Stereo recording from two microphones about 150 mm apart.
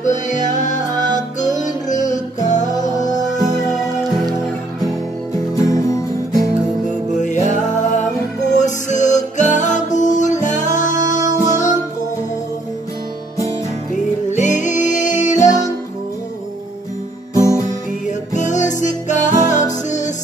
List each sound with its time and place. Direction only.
0.0 s music: 55° left (ahead or behind)
3.0 s music: 25° left (ahead or behind)
5.6 s music: 20° left (ahead or behind)
8.5 s music: 55° left (ahead or behind)
14.3 s music: 55° left (ahead or behind)
17.3 s music: 20° left (ahead or behind)
18.3 s music: 55° left (ahead or behind)